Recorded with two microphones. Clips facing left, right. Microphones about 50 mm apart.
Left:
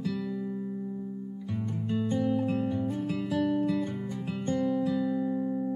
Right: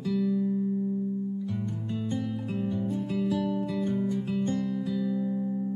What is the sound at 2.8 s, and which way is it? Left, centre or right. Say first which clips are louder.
Music: even; left.